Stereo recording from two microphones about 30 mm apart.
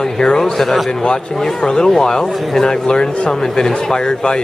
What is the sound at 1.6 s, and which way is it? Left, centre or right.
Speech, left.